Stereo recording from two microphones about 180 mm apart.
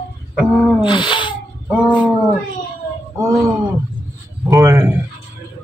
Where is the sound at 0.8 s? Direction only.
25° left (ahead or behind).